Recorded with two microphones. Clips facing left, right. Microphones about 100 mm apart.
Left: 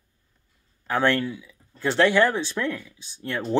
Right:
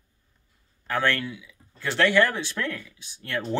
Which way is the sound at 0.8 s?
15° left (ahead or behind).